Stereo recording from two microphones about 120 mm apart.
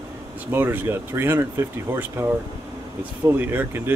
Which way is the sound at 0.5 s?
20° right (ahead or behind).